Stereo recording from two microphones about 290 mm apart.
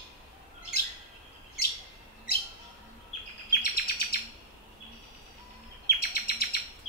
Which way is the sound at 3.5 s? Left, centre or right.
Left.